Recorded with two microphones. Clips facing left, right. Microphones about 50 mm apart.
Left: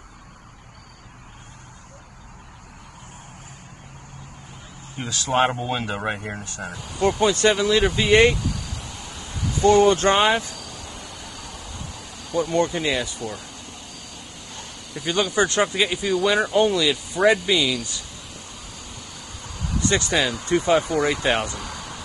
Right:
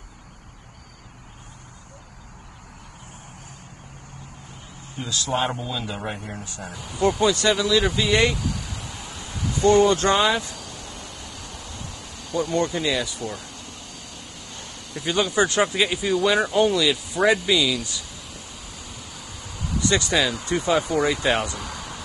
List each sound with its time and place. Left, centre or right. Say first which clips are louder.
4.9 s a man's voice: left 3 dB; left
6.3 s a man's voice: left 2 dB; left
6.7 s speech: even; centre
7.2 s speech: left 2 dB; left
8.3 s a sound: left 3 dB; centre
9.9 s speech: left 1 dB; centre
10.4 s a sound: even; centre
12.8 s speech: even; left
13.1 s insect: even; centre
14.7 s a sound: even; centre
19.8 s speech: even; left
20.7 s speech: right 1 dB; centre
21.4 s a sound: even; centre